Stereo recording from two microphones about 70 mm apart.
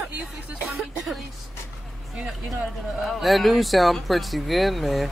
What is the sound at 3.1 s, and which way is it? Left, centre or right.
Speech, centre.